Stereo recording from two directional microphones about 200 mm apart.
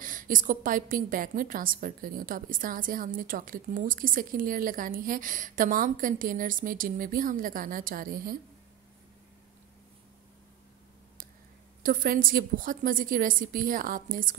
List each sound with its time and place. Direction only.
0.0 s a woman's voice: 40° right (ahead or behind)
11.8 s a woman's voice: 45° right (ahead or behind)